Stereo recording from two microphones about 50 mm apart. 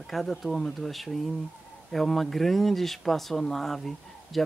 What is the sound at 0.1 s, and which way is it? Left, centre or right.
Speech, centre.